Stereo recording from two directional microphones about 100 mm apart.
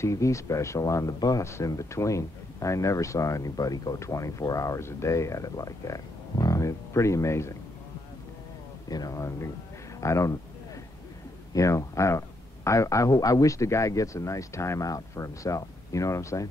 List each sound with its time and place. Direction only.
0.0 s speech: 30° left (ahead or behind)
8.8 s speech: 40° left (ahead or behind)
11.5 s speech: 30° left (ahead or behind)